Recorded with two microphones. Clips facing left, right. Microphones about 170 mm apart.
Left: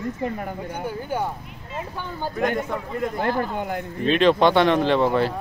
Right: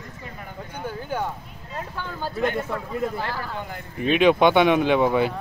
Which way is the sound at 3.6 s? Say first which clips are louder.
Left 7 dB; 50° left (ahead or behind).